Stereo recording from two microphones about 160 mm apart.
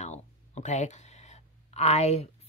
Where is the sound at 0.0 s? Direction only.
45° left (ahead or behind).